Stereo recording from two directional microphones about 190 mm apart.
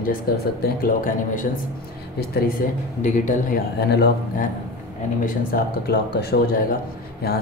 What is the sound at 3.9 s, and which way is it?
Speech, 60° left (ahead or behind).